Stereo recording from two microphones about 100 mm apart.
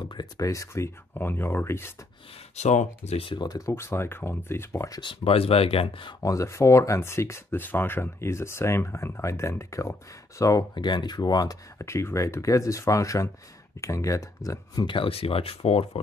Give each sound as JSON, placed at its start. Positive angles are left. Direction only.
{"t": 0.1, "sound": "speech", "side_deg": 40}
{"t": 1.1, "sound": "speech", "side_deg": 20}
{"t": 2.6, "sound": "speech", "side_deg": 90}
{"t": 3.1, "sound": "speech", "side_deg": 70}
{"t": 3.3, "sound": "speech", "side_deg": 40}
{"t": 5.0, "sound": "speech", "side_deg": 75}
{"t": 6.2, "sound": "speech", "side_deg": 30}
{"t": 11.8, "sound": "speech", "side_deg": 30}
{"t": 14.9, "sound": "speech", "side_deg": 65}